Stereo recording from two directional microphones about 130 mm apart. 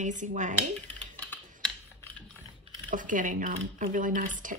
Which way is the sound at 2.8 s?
90° right.